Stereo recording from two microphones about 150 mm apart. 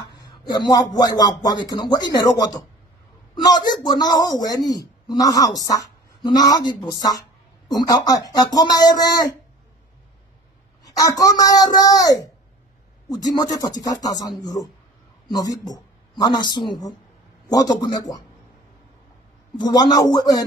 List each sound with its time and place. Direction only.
0.1 s a man's voice: 25° left (ahead or behind)
10.8 s a man's voice: 25° left (ahead or behind)
19.6 s a man's voice: 25° left (ahead or behind)